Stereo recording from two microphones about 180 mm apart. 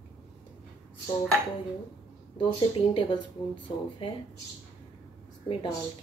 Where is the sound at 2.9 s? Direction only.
30° left (ahead or behind).